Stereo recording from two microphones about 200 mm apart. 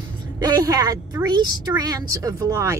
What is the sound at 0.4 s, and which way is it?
A woman's voice, 20° right (ahead or behind).